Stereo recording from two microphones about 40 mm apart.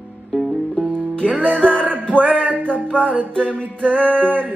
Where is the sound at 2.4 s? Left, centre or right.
Right.